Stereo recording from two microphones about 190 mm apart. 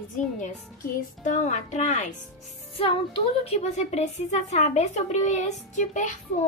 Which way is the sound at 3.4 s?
35° left (ahead or behind).